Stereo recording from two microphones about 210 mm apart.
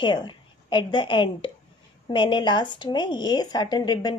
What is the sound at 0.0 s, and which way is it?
A woman's voice, 20° left (ahead or behind).